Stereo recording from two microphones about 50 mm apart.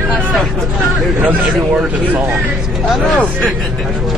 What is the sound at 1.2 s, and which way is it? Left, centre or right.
Speech, right.